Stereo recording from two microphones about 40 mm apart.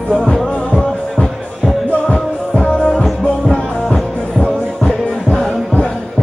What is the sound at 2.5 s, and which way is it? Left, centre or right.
Music, left.